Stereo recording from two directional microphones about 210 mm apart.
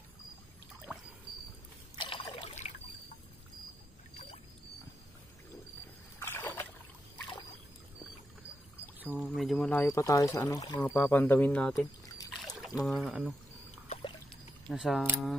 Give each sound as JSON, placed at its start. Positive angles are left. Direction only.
{"t": 2.0, "sound": "trickle", "side_deg": 25}
{"t": 6.1, "sound": "splash", "side_deg": 10}
{"t": 9.0, "sound": "pour", "side_deg": -5}
{"t": 10.7, "sound": "speech", "side_deg": 15}
{"t": 14.7, "sound": "speech", "side_deg": 0}